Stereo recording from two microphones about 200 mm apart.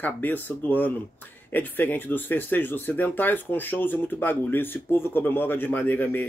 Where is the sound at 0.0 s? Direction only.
10° left (ahead or behind).